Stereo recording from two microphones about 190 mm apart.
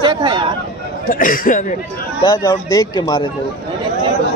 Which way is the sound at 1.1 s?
45° left (ahead or behind).